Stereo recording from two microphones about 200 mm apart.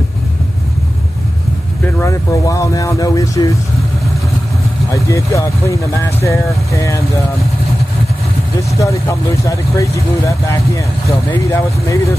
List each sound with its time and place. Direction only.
2.0 s speech: 15° left (ahead or behind)
4.9 s speech: 15° left (ahead or behind)
8.5 s speech: 15° left (ahead or behind)